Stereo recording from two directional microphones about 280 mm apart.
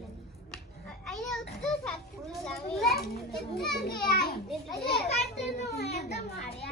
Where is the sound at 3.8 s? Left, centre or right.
Left.